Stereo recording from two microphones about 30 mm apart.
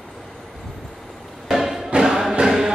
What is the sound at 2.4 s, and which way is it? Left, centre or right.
Music, centre.